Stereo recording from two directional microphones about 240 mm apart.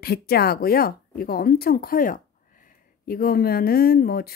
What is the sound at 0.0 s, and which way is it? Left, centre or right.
Speech, left.